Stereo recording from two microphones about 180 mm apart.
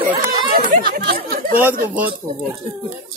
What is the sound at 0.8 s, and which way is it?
Chatter, 55° right (ahead or behind).